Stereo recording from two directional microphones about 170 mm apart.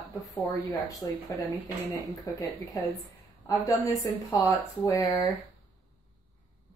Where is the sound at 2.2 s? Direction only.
20° left (ahead or behind).